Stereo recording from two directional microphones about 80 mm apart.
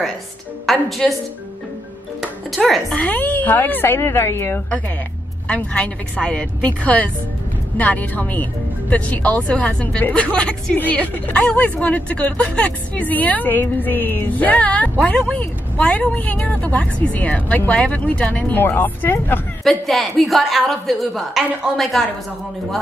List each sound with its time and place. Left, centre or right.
0.7 s a woman's voice: centre
2.5 s a woman's voice: centre
2.9 s a woman's voice: centre
5.5 s a woman's voice: centre
19.6 s a woman's voice: centre